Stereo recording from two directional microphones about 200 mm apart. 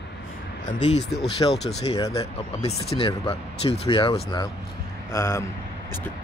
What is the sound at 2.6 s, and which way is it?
Speech, 30° left (ahead or behind).